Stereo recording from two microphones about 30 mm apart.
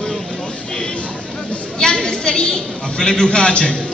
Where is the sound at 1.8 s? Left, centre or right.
Left.